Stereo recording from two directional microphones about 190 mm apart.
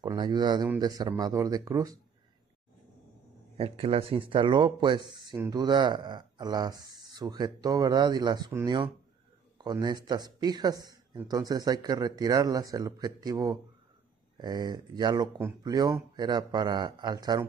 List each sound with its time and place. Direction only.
0.0 s a man's voice: 25° right (ahead or behind)
3.5 s a man's voice: 30° right (ahead or behind)